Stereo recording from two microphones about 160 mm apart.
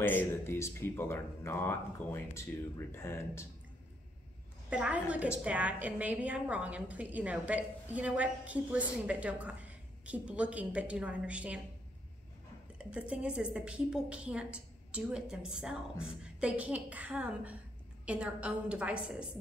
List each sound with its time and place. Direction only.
0.0 s speech: 10° left (ahead or behind)
4.6 s a woman's voice: 10° right (ahead or behind)
12.7 s a woman's voice: 5° right (ahead or behind)